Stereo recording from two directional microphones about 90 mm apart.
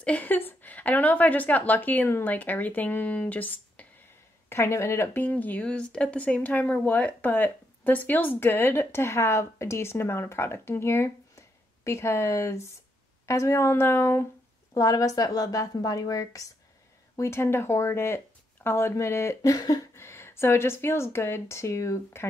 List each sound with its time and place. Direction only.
0.0 s speech: 15° left (ahead or behind)
4.5 s speech: 30° left (ahead or behind)
14.7 s a woman's voice: 40° left (ahead or behind)
17.2 s speech: 30° left (ahead or behind)
19.5 s a sound: 45° left (ahead or behind)
20.0 s speech: 30° left (ahead or behind)